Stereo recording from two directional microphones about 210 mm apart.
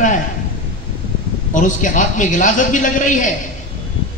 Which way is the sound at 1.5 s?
40° left (ahead or behind).